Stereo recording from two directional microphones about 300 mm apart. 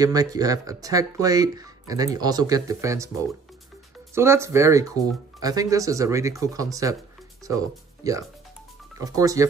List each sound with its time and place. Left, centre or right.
0.0 s speech: centre
4.1 s speech: centre